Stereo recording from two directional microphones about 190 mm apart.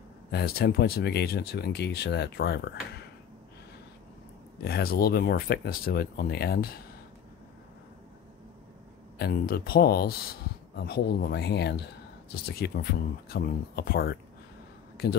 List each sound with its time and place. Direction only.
0.3 s speech: 60° left (ahead or behind)
4.6 s speech: 55° left (ahead or behind)
9.2 s speech: 55° left (ahead or behind)